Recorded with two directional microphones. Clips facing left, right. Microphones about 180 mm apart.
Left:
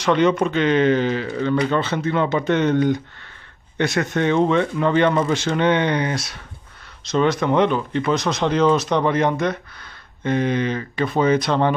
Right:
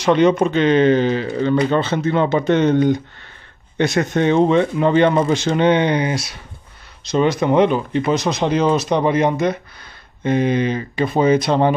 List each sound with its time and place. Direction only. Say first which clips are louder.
0.0 s speech: right 3 dB; 20° right (ahead or behind)